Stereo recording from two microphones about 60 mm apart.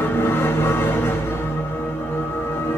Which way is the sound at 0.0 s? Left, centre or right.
Left.